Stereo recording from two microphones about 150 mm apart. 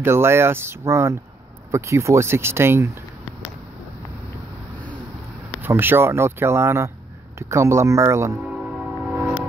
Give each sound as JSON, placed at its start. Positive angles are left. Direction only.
{"t": 0.0, "sound": "speech", "side_deg": -15}
{"t": 5.6, "sound": "speech", "side_deg": -15}
{"t": 9.0, "sound": "a sound", "side_deg": -10}